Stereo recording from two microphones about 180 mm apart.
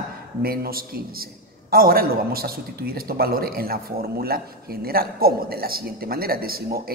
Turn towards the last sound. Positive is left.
turn(degrees=-55)  # may be behind; listen again after turning